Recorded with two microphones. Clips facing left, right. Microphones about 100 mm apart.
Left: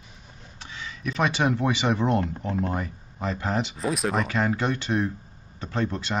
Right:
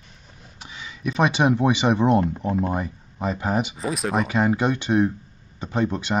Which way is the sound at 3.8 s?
Centre (ahead or behind).